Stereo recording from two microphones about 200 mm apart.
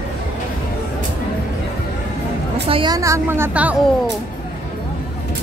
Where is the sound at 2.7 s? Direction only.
20° right (ahead or behind).